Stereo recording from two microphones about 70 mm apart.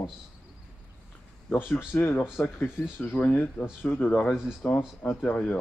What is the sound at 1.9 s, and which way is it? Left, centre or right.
Speech, left.